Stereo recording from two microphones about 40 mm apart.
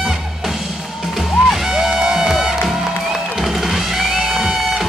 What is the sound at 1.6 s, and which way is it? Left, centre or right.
Music, centre.